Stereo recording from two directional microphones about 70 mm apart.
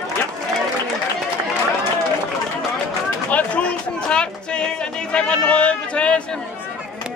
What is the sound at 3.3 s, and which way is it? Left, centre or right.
Music, centre.